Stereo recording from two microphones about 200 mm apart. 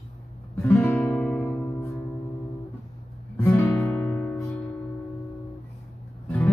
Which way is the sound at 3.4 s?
10° left (ahead or behind).